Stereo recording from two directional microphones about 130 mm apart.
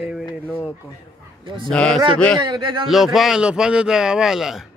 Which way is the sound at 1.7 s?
5° left (ahead or behind).